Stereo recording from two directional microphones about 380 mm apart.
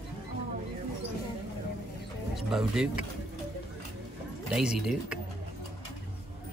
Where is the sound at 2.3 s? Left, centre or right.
Centre.